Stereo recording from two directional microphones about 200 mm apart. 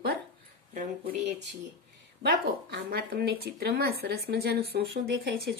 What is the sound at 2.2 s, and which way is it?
Speech, 50° right (ahead or behind).